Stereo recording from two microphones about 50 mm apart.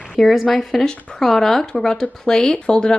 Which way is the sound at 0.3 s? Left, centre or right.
Centre.